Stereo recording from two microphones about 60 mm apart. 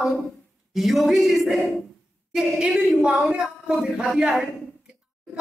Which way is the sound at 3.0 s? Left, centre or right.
Centre.